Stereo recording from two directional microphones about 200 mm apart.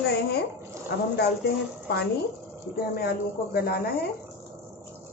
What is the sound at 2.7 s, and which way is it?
A woman's voice, 50° left (ahead or behind).